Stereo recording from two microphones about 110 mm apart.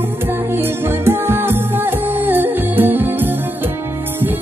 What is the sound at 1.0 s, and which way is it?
Music, 20° right (ahead or behind).